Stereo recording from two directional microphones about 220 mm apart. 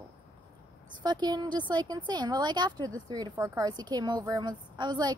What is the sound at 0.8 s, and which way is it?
A woman's voice, 20° right (ahead or behind).